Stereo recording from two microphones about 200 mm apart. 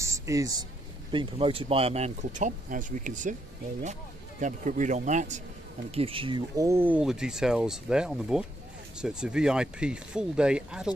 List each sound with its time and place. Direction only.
0.0 s speech: 15° right (ahead or behind); by 3.3 s 40° right (ahead or behind)
4.4 s speech: 40° right (ahead or behind); by 11.0 s 5° right (ahead or behind)